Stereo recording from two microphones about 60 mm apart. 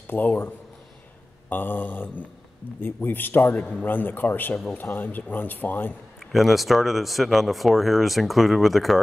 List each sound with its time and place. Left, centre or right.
0.0 s a man's voice: left
1.5 s speech: left
6.1 s speech: centre